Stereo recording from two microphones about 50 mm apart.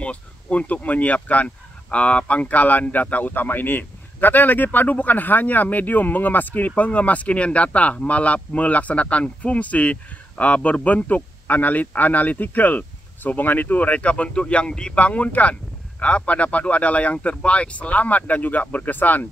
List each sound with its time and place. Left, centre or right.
0.0 s speech: left
15.0 s speech: left